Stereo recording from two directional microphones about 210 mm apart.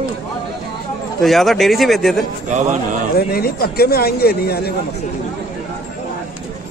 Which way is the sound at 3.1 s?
45° left (ahead or behind).